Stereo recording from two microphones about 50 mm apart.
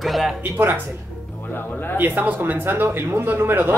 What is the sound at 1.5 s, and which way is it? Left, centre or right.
Speech, left.